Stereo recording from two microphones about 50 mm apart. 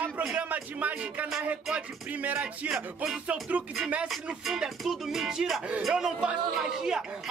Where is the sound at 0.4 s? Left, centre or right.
Right.